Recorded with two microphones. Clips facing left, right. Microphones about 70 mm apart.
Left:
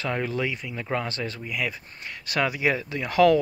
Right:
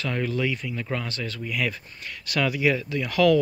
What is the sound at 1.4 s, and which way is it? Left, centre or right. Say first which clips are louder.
Speech: right 4 dB; centre.